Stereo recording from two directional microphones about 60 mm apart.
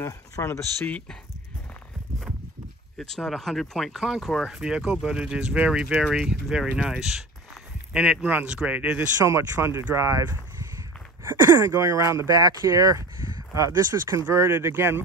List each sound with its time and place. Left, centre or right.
0.0 s speech: left
3.0 s speech: centre
4.6 s speech: centre
6.0 s speech: centre
6.5 s speech: centre
7.9 s speech: centre
9.2 s speech: right
9.9 s speech: right
11.2 s speech: right
12.3 s speech: right
14.3 s speech: right
14.7 s speech: right